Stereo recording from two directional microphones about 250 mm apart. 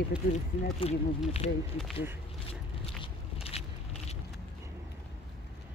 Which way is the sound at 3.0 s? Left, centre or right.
Left.